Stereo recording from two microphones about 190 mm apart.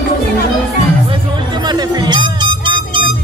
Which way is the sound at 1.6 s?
20° right (ahead or behind).